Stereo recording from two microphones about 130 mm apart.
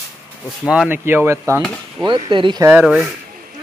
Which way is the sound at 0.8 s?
15° right (ahead or behind).